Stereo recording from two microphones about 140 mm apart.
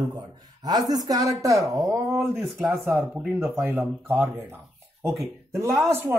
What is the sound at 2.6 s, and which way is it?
Speech, 5° right (ahead or behind).